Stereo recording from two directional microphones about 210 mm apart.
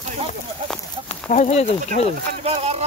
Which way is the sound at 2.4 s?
30° right (ahead or behind).